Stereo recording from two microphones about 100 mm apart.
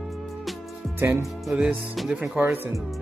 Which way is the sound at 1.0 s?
20° right (ahead or behind).